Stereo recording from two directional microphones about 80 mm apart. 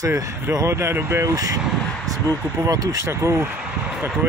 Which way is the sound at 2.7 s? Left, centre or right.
Right.